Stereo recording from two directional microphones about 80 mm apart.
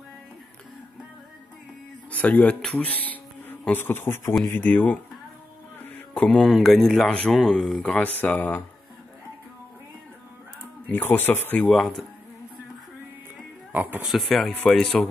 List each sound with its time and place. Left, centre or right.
2.0 s speech: centre
5.9 s mantra: left
6.2 s speech: centre
7.8 s speech: centre
10.9 s speech: left
11.6 s speech: centre
13.7 s speech: right
14.0 s speech: centre
14.7 s speech: centre